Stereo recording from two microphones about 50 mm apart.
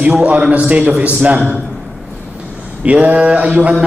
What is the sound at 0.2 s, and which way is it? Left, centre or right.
A man's voice, right.